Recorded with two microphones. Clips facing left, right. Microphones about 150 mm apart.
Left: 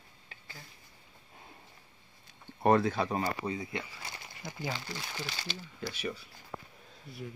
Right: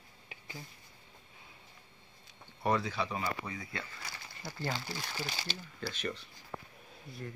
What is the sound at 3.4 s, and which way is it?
Speech, 25° left (ahead or behind).